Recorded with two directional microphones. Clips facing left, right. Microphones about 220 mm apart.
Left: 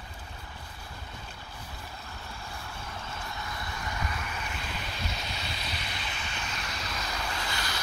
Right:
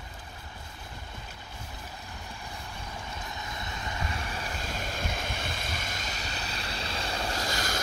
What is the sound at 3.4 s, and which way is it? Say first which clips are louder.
Vehicle: even; 20° right (ahead or behind).